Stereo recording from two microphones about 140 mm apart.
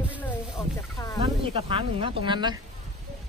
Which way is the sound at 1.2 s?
45° right (ahead or behind).